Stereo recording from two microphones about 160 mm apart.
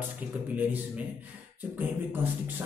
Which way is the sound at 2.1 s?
10° right (ahead or behind).